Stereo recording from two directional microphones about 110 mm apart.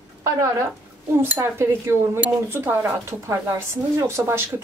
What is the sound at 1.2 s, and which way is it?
Speech, 20° right (ahead or behind).